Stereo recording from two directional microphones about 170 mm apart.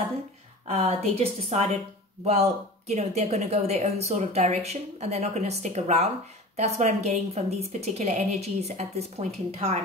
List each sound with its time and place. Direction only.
0.7 s speech: 40° right (ahead or behind)